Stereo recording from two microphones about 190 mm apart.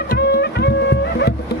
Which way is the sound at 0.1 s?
60° left (ahead or behind).